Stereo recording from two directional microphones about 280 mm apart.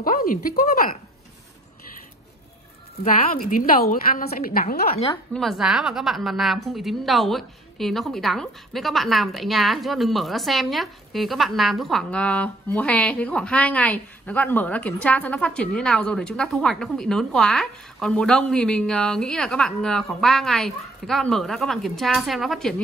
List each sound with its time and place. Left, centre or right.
0.0 s a woman's voice: left
3.0 s a woman's voice: left
5.3 s a woman's voice: centre